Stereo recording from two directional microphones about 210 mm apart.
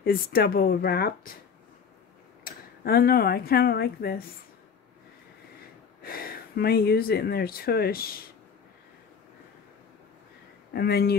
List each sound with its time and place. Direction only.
0.0 s speech: 45° left (ahead or behind)
2.4 s speech: 45° left (ahead or behind)
6.0 s speech: 45° left (ahead or behind)
10.7 s speech: 50° left (ahead or behind)